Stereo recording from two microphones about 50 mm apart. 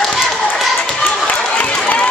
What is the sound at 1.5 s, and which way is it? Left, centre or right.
Run, left.